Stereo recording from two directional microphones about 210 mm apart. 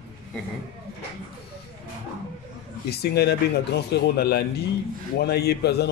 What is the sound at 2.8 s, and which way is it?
Speech, 50° left (ahead or behind).